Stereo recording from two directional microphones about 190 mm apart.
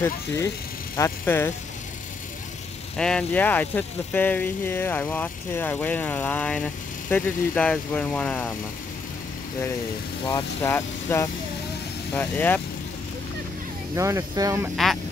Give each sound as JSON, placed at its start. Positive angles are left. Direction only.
{"t": 0.9, "sound": "speech", "side_deg": 15}
{"t": 3.0, "sound": "speech", "side_deg": 5}
{"t": 10.2, "sound": "speech", "side_deg": 15}
{"t": 13.9, "sound": "speech", "side_deg": -15}